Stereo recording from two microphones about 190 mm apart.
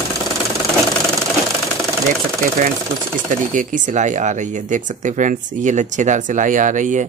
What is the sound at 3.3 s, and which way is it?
Speech, 40° right (ahead or behind).